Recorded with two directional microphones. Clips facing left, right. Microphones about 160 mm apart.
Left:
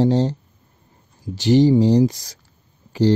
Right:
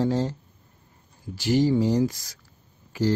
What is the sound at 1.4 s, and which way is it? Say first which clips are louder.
Speech: left 7 dB; 25° left (ahead or behind).